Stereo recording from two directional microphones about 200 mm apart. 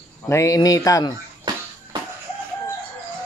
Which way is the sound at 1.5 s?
20° right (ahead or behind).